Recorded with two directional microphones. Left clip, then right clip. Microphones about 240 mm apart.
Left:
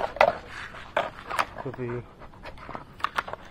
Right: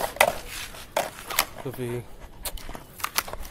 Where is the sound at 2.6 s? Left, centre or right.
Centre.